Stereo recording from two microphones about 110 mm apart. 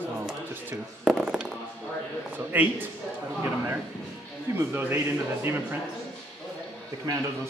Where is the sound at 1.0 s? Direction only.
5° right (ahead or behind).